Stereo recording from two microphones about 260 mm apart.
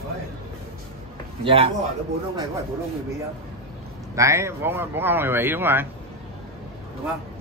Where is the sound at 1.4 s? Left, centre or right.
Right.